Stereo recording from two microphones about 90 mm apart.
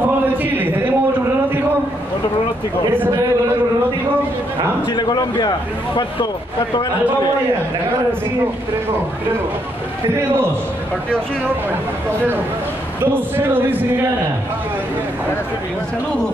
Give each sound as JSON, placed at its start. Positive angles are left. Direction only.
{"t": 0.4, "sound": "a sound", "side_deg": -20}
{"t": 4.9, "sound": "a man's voice", "side_deg": 50}
{"t": 13.0, "sound": "speech", "side_deg": -25}